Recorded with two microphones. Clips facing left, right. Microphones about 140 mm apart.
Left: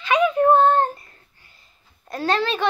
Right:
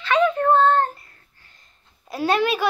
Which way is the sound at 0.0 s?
10° left (ahead or behind).